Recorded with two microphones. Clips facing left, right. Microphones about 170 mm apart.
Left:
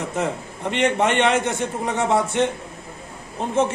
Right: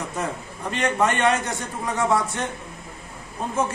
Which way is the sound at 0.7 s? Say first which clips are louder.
Left 3 dB; 20° left (ahead or behind).